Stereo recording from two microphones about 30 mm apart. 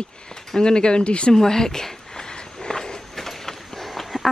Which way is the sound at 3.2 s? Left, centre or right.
Centre.